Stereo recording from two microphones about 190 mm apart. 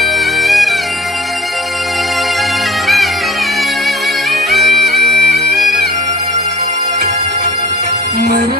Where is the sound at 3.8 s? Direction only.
Centre (ahead or behind).